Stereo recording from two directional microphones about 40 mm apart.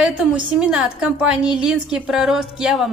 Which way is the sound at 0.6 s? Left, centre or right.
Right.